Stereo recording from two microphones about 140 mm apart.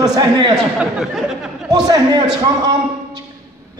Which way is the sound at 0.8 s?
5° right (ahead or behind).